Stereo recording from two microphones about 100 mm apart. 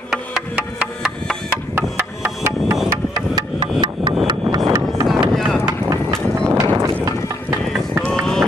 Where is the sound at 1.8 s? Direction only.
25° right (ahead or behind).